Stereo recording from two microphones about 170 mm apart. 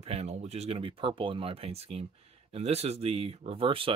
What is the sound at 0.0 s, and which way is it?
Speech, 40° right (ahead or behind).